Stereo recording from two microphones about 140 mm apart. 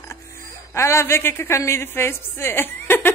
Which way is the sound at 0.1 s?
20° left (ahead or behind).